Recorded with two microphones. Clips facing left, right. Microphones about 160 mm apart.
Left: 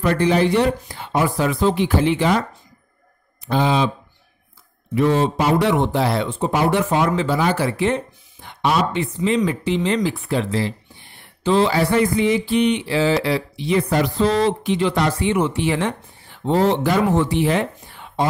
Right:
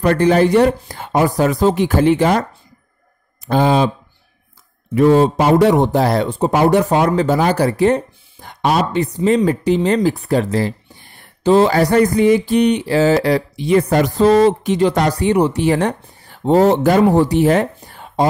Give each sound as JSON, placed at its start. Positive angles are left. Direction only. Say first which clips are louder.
{"t": 0.0, "sound": "speech", "louder": "right 4 dB", "side_deg": -45}
{"t": 3.4, "sound": "speech", "louder": "right 4 dB", "side_deg": -45}
{"t": 4.9, "sound": "speech", "louder": "right 6 dB", "side_deg": -40}